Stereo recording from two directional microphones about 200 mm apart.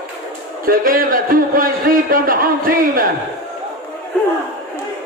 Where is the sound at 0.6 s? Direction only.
45° right (ahead or behind).